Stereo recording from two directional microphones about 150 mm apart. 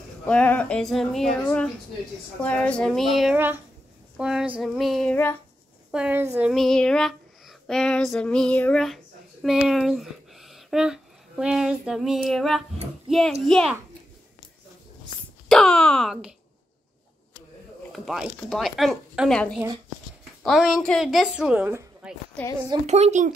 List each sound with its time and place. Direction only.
0.3 s speech: 10° left (ahead or behind)
3.3 s speech: 10° right (ahead or behind)
5.1 s speech: 10° left (ahead or behind)
5.9 s a woman's voice: 5° right (ahead or behind)
6.5 s a sound: centre (ahead or behind)
13.5 s speech: 5° left (ahead or behind)
15.4 s speech: 5° left (ahead or behind)
17.9 s speech: centre (ahead or behind)
22.8 s speech: 45° right (ahead or behind)